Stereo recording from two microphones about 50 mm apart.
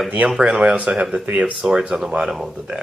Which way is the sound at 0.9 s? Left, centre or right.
Centre.